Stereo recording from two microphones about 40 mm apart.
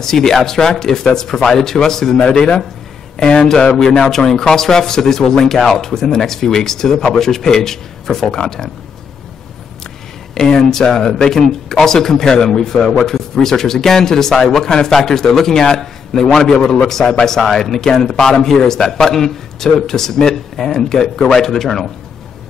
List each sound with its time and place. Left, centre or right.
0.0 s speech: centre
2.2 s speech: left
10.3 s speech: centre